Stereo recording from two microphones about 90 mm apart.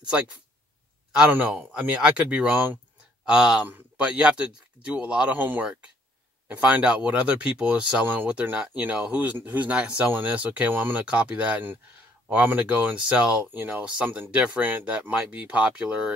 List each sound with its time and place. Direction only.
1.3 s speech: 20° right (ahead or behind)